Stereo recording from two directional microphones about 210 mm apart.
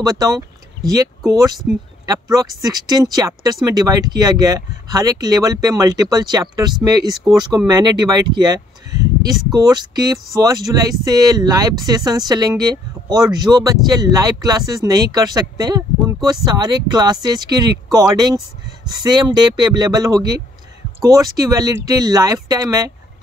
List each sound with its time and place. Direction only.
0.0 s speech: 15° right (ahead or behind)